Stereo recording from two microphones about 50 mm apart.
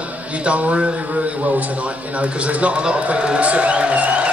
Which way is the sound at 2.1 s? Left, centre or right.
Right.